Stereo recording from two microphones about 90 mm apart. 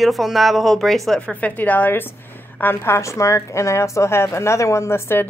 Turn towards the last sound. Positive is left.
turn(degrees=25)  # may be behind; listen again after turning